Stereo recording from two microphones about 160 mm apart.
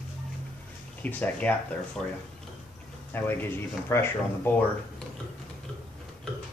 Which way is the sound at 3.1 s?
15° left (ahead or behind).